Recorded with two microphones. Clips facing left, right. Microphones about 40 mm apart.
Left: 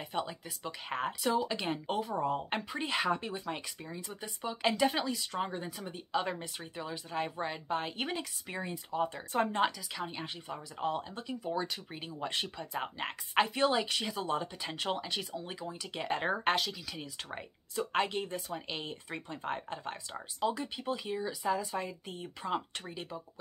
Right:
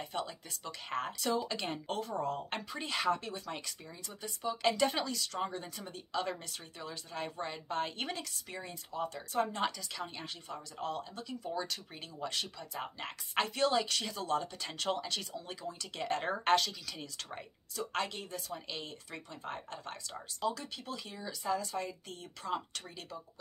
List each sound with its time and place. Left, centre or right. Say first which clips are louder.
0.1 s speech: left 3 dB; centre; by 9.7 s left
9.9 s speech: left 3 dB; centre
17.7 s speech: left 5 dB; left